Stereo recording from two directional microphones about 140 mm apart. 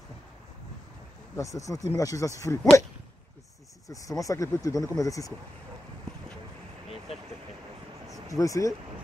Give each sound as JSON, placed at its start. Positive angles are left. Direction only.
{"t": 1.3, "sound": "speech", "side_deg": 25}
{"t": 3.9, "sound": "speech", "side_deg": 25}
{"t": 8.3, "sound": "speech", "side_deg": 25}